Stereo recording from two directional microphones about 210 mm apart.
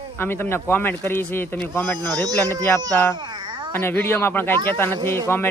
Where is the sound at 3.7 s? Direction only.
10° left (ahead or behind).